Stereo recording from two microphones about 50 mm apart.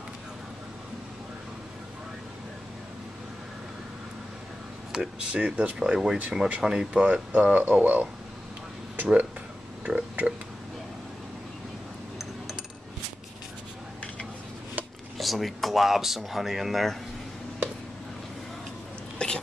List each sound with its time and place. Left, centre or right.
4.9 s speech: centre
5.3 s speech: right
6.6 s speech: centre
6.9 s speech: right
8.9 s a sound: right
15.1 s speech: centre
19.1 s a sound: centre